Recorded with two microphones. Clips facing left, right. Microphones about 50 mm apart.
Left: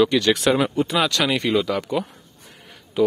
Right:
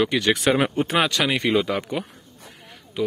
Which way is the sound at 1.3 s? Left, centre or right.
Centre.